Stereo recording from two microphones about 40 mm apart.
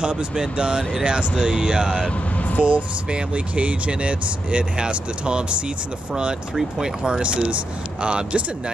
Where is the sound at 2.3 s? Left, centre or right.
Left.